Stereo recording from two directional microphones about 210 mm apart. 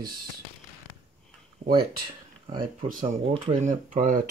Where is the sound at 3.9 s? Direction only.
40° right (ahead or behind).